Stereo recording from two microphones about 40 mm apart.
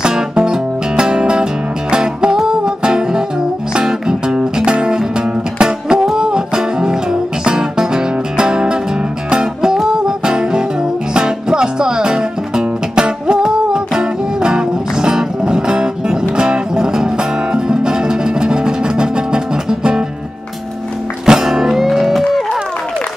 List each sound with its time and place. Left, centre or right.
0.0 s music: centre
21.3 s music: centre